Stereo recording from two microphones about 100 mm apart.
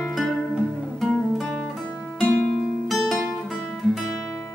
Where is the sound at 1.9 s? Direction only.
15° left (ahead or behind).